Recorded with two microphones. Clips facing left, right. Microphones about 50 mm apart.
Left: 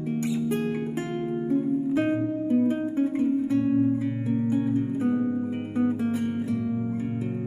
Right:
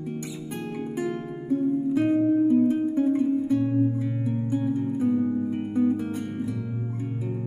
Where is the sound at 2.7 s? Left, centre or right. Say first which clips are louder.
Right 2 dB; left.